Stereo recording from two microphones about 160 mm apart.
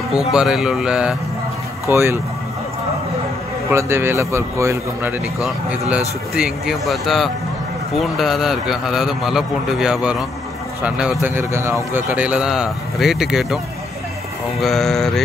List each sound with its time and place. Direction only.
0.3 s a man's voice: 5° right (ahead or behind)
1.9 s speech: 15° right (ahead or behind)
3.7 s a man's voice: 15° right (ahead or behind)
14.6 s a man's voice: centre (ahead or behind)